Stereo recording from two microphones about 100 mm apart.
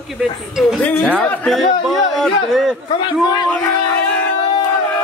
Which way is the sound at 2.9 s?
55° left (ahead or behind).